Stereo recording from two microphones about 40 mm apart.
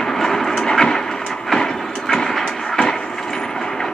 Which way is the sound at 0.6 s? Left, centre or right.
Centre.